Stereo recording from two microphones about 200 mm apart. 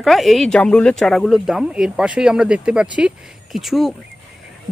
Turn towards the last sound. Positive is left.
turn(degrees=0)  # may be behind; listen again after turning